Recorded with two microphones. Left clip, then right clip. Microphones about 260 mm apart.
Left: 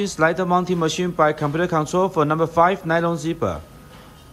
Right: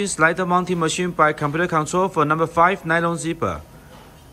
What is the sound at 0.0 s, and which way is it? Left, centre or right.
A man's voice, centre.